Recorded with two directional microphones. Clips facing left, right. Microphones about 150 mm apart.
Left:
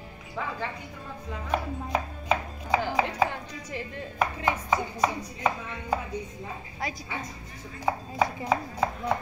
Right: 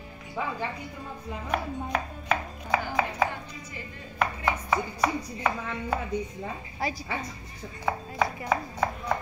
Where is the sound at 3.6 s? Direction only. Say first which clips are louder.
Left 6 dB; 90° left.